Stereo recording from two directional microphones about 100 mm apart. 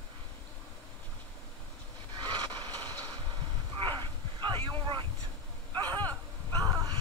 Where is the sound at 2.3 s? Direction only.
45° right (ahead or behind).